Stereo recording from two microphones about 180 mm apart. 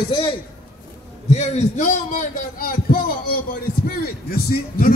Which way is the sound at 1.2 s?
40° left (ahead or behind).